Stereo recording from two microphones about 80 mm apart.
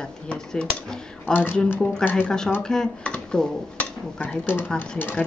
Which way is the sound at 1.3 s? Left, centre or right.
Left.